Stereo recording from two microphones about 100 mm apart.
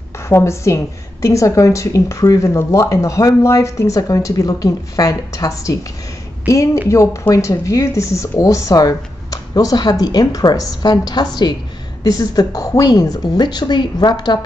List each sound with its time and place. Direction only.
0.3 s a woman's voice: 25° left (ahead or behind); by 14.4 s 45° left (ahead or behind)